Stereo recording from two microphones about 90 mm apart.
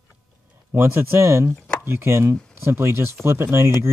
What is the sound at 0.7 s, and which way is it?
Speech, 25° right (ahead or behind).